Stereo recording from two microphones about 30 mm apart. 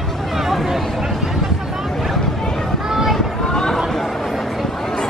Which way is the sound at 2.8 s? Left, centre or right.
Centre.